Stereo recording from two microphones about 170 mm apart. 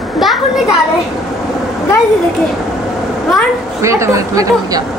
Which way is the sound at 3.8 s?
15° right (ahead or behind).